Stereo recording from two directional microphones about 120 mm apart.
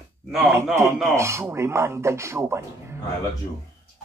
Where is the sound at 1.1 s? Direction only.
25° right (ahead or behind).